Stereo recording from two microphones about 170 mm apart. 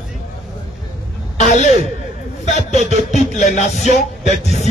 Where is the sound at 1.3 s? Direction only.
40° left (ahead or behind).